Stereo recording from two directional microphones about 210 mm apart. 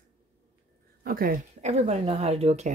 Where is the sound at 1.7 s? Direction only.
30° right (ahead or behind).